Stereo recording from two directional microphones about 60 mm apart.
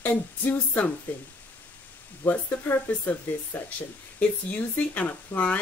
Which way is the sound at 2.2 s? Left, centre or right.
Left.